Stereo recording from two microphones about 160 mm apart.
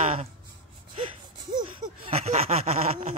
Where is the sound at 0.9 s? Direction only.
35° right (ahead or behind).